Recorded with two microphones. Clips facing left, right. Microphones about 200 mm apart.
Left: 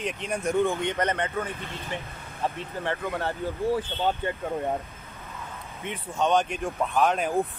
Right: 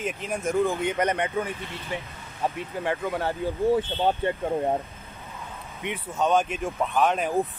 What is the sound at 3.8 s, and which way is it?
Speech, 30° right (ahead or behind).